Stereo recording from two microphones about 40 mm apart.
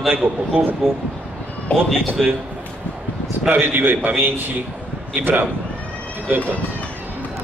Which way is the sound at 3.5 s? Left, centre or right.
Right.